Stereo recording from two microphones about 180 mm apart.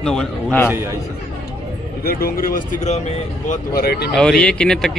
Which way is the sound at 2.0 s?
55° left (ahead or behind).